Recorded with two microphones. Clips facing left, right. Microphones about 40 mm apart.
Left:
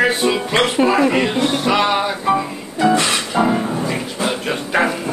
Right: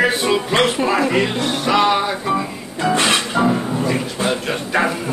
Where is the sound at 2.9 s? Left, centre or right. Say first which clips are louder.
Right 4 dB; right.